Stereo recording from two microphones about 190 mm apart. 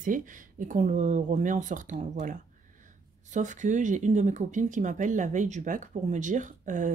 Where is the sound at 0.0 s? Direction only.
45° right (ahead or behind).